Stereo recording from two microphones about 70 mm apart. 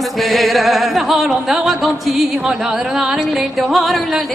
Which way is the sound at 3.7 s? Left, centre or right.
Centre.